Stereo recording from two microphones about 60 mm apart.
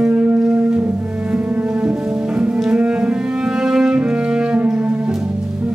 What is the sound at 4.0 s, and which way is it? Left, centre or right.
Music, centre.